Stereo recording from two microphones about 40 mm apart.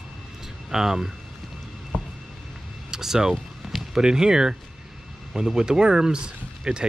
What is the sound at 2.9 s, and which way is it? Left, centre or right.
Speech, centre.